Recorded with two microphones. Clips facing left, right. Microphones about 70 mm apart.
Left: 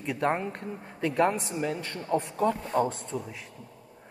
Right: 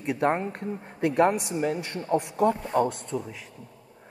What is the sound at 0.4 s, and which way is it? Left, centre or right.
Speech, right.